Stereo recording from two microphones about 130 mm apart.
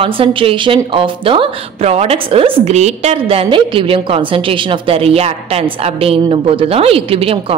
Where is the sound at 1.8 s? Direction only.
55° right (ahead or behind).